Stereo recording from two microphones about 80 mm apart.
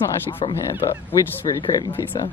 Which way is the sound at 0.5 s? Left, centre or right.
Left.